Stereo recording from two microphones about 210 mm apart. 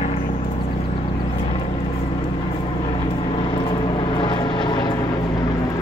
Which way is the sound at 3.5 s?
25° left (ahead or behind).